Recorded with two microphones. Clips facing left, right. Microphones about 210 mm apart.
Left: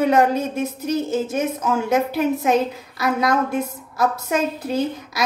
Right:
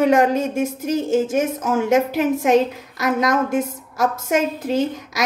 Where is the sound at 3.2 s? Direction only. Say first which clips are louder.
Right 1 dB; 45° right (ahead or behind).